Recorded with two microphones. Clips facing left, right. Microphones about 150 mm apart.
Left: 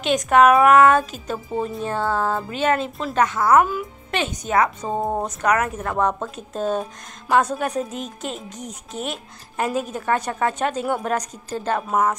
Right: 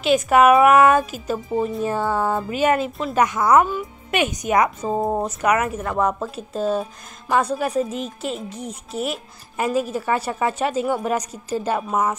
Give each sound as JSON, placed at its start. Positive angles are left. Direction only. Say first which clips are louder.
{"t": 0.0, "sound": "a woman's voice", "louder": "right 1 dB", "side_deg": -5}
{"t": 4.8, "sound": "a woman's voice", "louder": "right 2 dB", "side_deg": 0}